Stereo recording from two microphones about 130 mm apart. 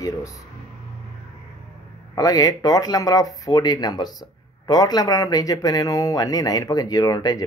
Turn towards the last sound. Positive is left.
turn(degrees=30)  # may be behind; listen again after turning